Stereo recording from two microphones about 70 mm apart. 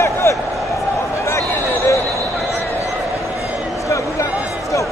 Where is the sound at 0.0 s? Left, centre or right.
Left.